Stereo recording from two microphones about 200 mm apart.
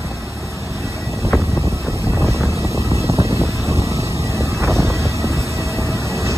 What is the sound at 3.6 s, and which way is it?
Vehicle, 15° left (ahead or behind).